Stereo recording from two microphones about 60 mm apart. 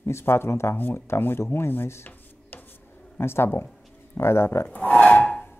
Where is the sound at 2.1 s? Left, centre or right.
Left.